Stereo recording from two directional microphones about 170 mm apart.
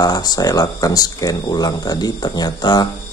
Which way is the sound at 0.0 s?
25° left (ahead or behind).